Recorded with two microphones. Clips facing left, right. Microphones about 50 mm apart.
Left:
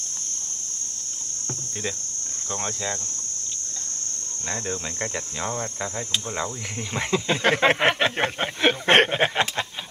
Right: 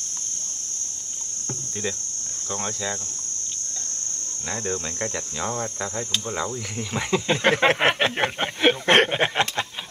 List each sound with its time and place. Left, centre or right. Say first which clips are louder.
2.5 s speech: right 1 dB; centre
5.0 s speech: even; centre
7.1 s speech: right 1 dB; centre
7.8 s a sound: even; centre
8.8 s speech: left 1 dB; left
9.2 s speech: even; centre